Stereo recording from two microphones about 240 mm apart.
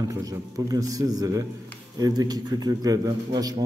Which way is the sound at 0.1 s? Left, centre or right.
Centre.